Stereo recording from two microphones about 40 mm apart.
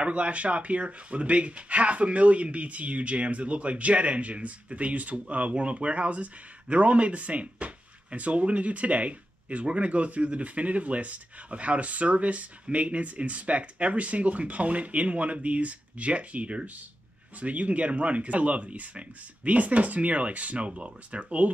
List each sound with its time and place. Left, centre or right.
0.0 s speech: right